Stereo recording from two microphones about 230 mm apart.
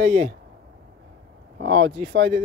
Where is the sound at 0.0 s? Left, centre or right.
Right.